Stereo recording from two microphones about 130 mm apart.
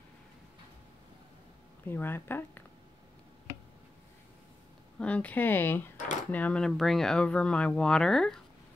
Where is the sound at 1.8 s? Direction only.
15° left (ahead or behind).